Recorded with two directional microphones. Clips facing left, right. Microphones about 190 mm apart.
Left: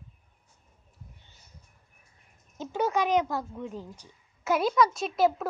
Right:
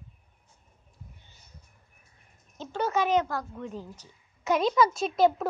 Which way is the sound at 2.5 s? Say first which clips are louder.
Left 1 dB; 5° left (ahead or behind).